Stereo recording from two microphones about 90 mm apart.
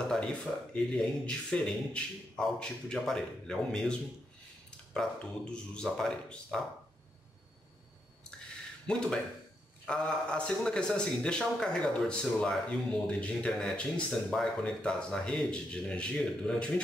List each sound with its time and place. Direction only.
0.1 s a man's voice: 10° left (ahead or behind)
8.8 s a man's voice: 10° left (ahead or behind)